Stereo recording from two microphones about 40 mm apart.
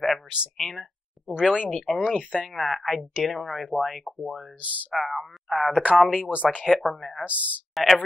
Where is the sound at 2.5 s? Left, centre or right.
Centre.